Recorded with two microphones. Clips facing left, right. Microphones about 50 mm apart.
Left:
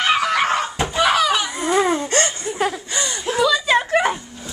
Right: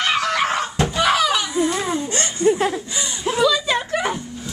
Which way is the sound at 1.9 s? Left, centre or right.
Left.